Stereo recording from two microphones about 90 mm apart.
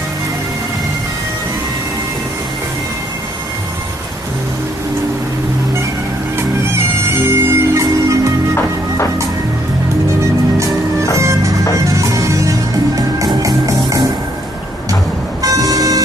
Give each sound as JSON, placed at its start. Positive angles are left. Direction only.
{"t": 6.3, "sound": "bagpipes", "side_deg": -30}
{"t": 7.8, "sound": "music", "side_deg": -35}
{"t": 8.5, "sound": "music", "side_deg": 30}
{"t": 11.1, "sound": "music", "side_deg": -35}
{"t": 15.4, "sound": "vehicle", "side_deg": -40}